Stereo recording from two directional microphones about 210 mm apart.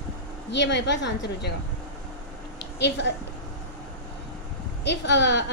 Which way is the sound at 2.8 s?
55° left (ahead or behind).